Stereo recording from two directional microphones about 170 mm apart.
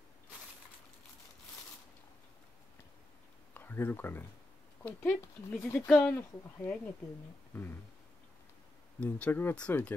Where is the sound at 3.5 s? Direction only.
15° left (ahead or behind).